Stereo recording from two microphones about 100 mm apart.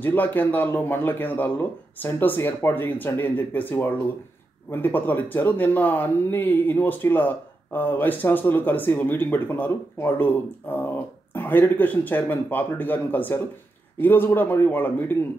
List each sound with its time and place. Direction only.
0.0 s speech: 15° left (ahead or behind)